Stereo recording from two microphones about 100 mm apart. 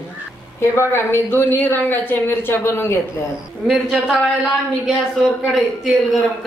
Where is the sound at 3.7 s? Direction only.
Centre (ahead or behind).